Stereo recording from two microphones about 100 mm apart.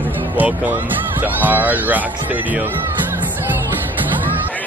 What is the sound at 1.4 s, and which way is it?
Speech, 15° right (ahead or behind).